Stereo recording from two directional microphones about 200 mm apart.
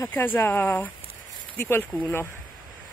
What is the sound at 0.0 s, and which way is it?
Speech, 10° left (ahead or behind).